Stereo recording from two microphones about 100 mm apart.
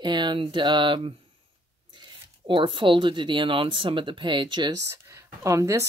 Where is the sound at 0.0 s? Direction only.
50° right (ahead or behind).